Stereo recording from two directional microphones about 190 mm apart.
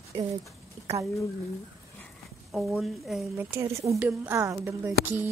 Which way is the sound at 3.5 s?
15° right (ahead or behind).